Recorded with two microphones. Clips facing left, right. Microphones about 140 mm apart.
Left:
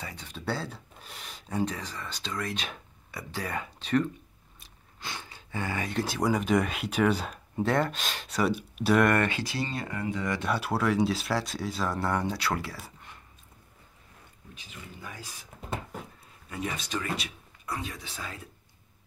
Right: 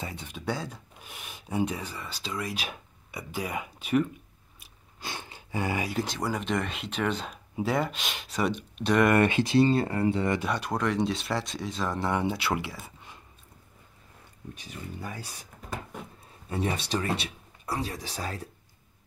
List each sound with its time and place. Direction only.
0.0 s speech: 10° right (ahead or behind)
4.6 s a sound: 15° right (ahead or behind)
6.0 s speech: 10° left (ahead or behind)
9.1 s speech: 15° right (ahead or behind)
10.4 s speech: 5° left (ahead or behind)
12.3 s speech: 25° right (ahead or behind)
14.7 s speech: 35° right (ahead or behind)
16.4 s speech: 30° right (ahead or behind)